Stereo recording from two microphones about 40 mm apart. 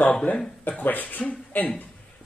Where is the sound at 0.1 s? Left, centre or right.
Left.